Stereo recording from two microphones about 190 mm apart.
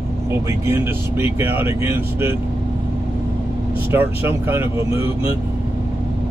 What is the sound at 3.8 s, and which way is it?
Speech, 10° right (ahead or behind).